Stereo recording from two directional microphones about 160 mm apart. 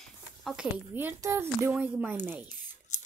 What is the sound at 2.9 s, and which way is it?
Scissors, 50° left (ahead or behind).